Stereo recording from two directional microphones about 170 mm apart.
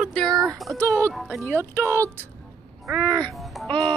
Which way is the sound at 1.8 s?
15° right (ahead or behind).